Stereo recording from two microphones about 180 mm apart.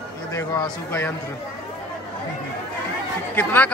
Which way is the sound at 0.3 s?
15° left (ahead or behind).